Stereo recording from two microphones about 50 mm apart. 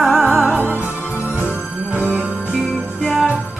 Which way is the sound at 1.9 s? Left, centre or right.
Right.